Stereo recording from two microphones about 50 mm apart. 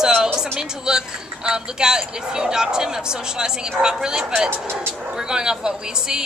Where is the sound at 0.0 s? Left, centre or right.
Centre.